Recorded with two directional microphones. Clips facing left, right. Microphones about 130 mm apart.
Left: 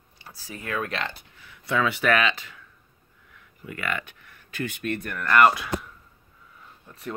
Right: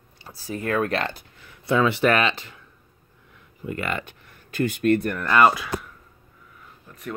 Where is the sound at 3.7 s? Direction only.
30° right (ahead or behind).